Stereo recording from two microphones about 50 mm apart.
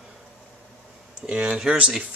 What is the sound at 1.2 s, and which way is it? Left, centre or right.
Speech, right.